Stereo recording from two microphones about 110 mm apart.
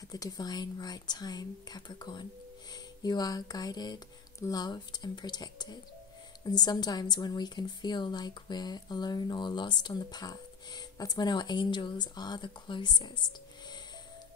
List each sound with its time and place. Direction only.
0.1 s a woman's voice: 35° left (ahead or behind)